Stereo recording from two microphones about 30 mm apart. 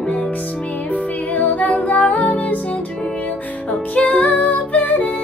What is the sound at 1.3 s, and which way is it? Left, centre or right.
Music, left.